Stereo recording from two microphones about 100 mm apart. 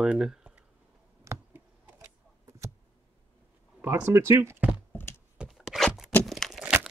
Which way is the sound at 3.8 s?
20° right (ahead or behind).